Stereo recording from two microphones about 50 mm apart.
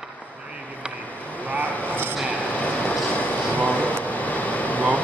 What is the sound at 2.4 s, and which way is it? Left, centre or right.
Vehicle, left.